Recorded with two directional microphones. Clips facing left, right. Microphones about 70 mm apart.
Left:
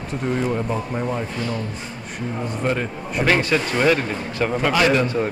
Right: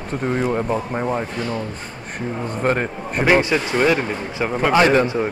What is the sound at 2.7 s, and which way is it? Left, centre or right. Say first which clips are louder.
Speech: right 4 dB; right.